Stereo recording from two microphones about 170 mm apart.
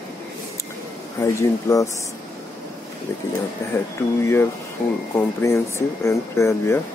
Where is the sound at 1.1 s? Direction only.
20° left (ahead or behind).